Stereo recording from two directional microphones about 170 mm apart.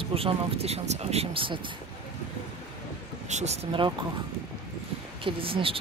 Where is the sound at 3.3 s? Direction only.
40° right (ahead or behind).